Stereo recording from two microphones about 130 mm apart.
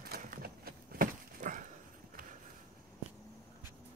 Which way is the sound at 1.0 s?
85° right.